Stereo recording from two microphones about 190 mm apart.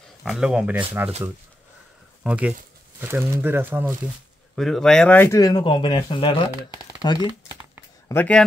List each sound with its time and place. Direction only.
0.2 s speech: centre (ahead or behind)
2.2 s speech: 5° right (ahead or behind)
4.6 s speech: centre (ahead or behind); by 7.2 s 20° left (ahead or behind)
8.1 s speech: 10° left (ahead or behind)